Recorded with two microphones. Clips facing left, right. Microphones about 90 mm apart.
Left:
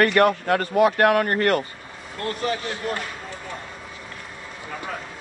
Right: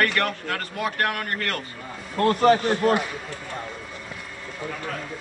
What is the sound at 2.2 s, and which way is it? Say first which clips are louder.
Speech: right 9 dB; 50° right (ahead or behind).